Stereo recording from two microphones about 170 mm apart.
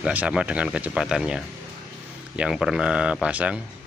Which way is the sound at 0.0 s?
5° right (ahead or behind).